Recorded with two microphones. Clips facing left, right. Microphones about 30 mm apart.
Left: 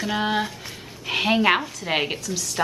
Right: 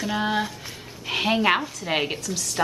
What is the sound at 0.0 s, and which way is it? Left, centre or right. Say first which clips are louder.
A woman's voice: left 1 dB; centre.